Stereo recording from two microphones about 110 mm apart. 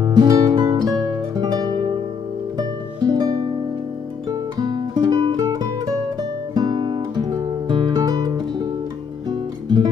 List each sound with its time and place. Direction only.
0.0 s music: 35° right (ahead or behind)